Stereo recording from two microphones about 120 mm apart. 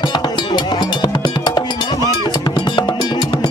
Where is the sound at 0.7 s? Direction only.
35° left (ahead or behind).